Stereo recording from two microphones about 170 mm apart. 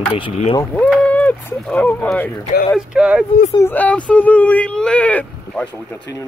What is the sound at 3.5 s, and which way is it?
Speech, 15° left (ahead or behind).